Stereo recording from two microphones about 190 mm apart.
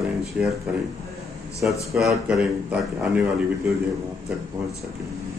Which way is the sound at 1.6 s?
Centre (ahead or behind).